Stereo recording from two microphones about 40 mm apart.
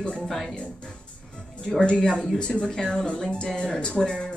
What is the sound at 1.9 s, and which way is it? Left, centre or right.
Speech, centre.